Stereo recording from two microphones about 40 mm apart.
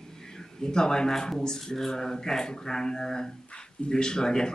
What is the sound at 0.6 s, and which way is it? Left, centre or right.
Speech, centre.